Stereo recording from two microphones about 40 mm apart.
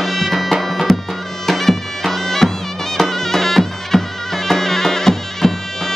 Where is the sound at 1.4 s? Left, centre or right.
Centre.